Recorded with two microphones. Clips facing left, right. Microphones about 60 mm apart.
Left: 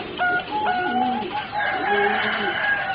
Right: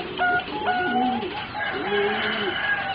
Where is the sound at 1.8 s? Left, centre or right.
Left.